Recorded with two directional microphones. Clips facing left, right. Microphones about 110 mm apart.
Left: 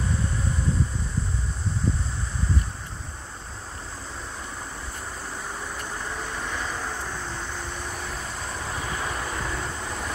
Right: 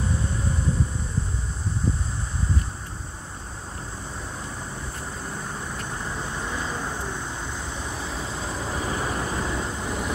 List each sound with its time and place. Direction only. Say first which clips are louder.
6.0 s vehicle: right 1 dB; 15° right (ahead or behind)
8.8 s vehicle: right 3 dB; 20° right (ahead or behind)